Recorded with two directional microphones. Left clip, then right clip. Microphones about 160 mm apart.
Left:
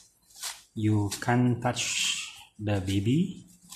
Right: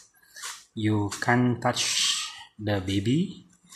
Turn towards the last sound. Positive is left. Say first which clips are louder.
# right 2 dB
turn(degrees=-5)  # may be behind; listen again after turning